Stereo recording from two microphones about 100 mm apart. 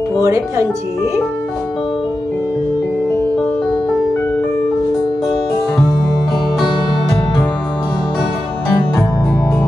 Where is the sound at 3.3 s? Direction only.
5° left (ahead or behind).